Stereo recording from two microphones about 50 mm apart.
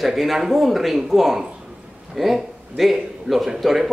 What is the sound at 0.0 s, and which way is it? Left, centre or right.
A man's voice, centre.